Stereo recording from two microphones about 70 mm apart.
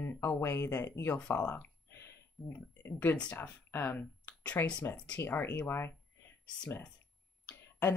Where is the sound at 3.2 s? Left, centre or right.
Left.